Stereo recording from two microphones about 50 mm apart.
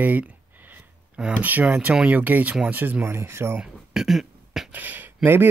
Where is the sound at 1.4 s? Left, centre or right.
Right.